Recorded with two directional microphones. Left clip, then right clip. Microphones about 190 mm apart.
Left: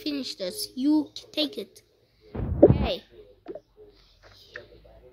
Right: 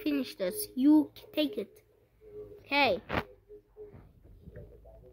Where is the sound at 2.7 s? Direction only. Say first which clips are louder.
Right 2 dB; 20° right (ahead or behind).